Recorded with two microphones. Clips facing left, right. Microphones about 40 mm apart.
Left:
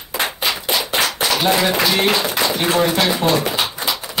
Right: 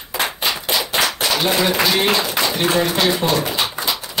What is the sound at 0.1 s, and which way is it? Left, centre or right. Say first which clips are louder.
Clapping: even; centre.